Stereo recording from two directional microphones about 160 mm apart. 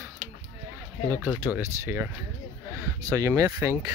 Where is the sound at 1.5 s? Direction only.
15° right (ahead or behind).